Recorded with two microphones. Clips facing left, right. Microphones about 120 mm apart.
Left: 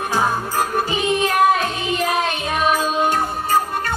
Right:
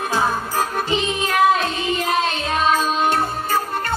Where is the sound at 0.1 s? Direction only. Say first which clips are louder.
Left 1 dB; 15° left (ahead or behind).